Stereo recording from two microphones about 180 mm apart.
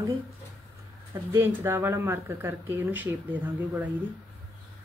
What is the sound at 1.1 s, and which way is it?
Speech, 15° right (ahead or behind).